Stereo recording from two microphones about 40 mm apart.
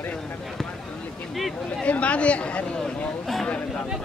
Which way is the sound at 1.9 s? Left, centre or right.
Left.